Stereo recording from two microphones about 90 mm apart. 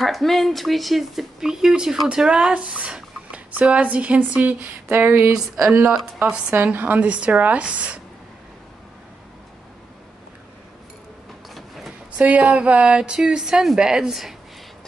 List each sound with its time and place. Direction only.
0.0 s speech: centre (ahead or behind); by 8.0 s 15° right (ahead or behind)
11.5 s a sound: centre (ahead or behind)
12.2 s speech: 15° right (ahead or behind)